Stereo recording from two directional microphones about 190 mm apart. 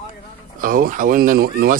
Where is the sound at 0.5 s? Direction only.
45° right (ahead or behind).